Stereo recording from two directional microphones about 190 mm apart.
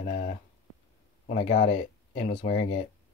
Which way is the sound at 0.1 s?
35° left (ahead or behind).